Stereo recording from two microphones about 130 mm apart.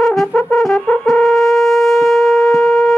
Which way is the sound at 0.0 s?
Centre (ahead or behind).